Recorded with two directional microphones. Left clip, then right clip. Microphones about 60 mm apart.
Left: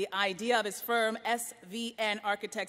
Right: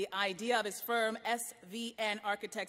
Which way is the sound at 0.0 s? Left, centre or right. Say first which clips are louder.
Left 4 dB; right.